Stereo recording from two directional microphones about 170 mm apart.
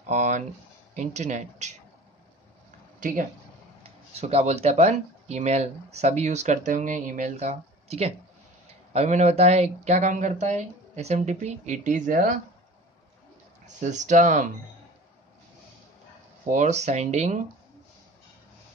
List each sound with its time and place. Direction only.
0.1 s speech: 45° right (ahead or behind)
3.0 s speech: 50° right (ahead or behind)
4.1 s speech: 40° right (ahead or behind)
13.7 s speech: 45° right (ahead or behind)
16.4 s speech: 45° right (ahead or behind)